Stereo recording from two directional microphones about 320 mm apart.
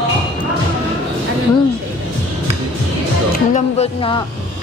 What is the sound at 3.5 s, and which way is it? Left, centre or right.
Speech, centre.